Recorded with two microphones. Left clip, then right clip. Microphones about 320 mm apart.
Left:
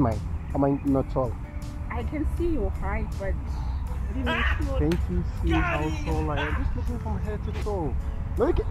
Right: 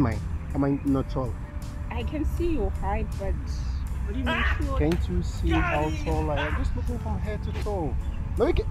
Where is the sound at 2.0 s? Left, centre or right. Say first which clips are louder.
Even; left.